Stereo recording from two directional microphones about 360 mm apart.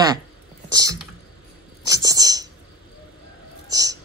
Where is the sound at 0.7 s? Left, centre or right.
Centre.